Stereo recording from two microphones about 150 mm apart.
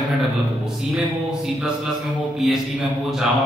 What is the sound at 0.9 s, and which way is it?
Mantra, centre (ahead or behind).